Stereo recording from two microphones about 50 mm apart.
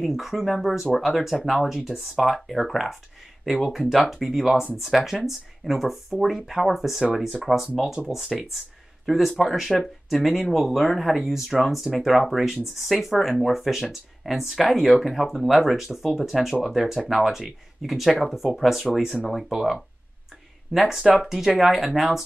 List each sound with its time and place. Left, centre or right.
0.0 s speech: centre